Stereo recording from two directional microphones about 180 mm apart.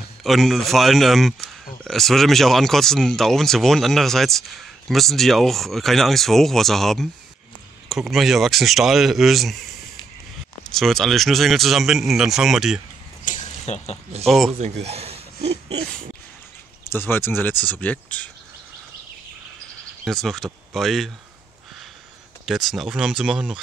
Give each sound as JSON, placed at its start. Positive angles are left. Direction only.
{"t": 0.2, "sound": "speech", "side_deg": 0}
{"t": 10.7, "sound": "speech", "side_deg": 0}
{"t": 13.2, "sound": "a sound", "side_deg": 45}
{"t": 14.2, "sound": "speech", "side_deg": 0}
{"t": 14.6, "sound": "a sound", "side_deg": -35}
{"t": 16.9, "sound": "speech", "side_deg": 10}
{"t": 20.1, "sound": "speech", "side_deg": 0}
{"t": 22.5, "sound": "speech", "side_deg": 0}